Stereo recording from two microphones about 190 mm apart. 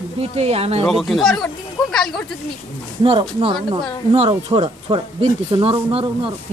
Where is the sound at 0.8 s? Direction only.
Centre (ahead or behind).